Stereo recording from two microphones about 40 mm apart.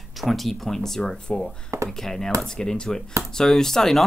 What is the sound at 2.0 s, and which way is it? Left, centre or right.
Speech, centre.